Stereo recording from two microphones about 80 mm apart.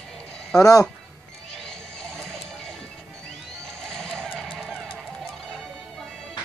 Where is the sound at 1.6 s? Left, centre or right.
Centre.